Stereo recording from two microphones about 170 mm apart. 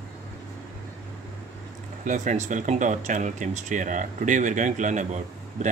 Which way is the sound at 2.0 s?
45° right (ahead or behind).